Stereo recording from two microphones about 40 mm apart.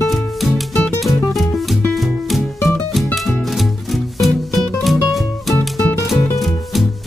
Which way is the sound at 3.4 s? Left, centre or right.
Centre.